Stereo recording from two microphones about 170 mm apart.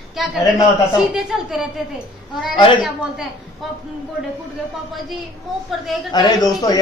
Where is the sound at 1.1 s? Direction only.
Centre (ahead or behind).